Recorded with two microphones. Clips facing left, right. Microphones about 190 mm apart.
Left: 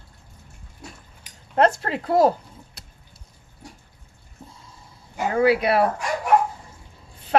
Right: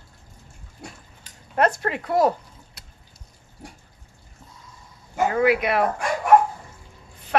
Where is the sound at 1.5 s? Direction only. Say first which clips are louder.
Left 2 dB; 30° left (ahead or behind).